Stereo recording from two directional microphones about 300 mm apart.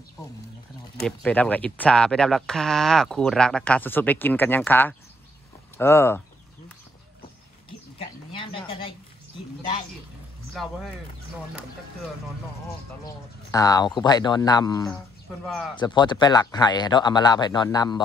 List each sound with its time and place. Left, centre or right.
0.9 s speech: centre
8.0 s a sound: centre
10.5 s speech: centre
13.5 s speech: centre
15.2 s speech: centre
15.7 s speech: centre